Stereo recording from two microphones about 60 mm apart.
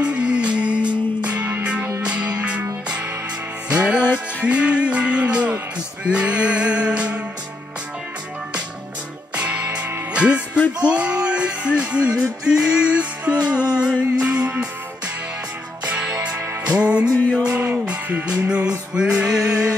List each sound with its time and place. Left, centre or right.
0.0 s music: centre
3.6 s music: centre
9.3 s music: right
15.8 s music: right